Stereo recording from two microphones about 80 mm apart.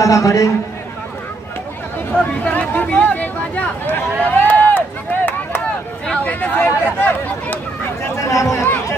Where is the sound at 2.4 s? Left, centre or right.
Centre.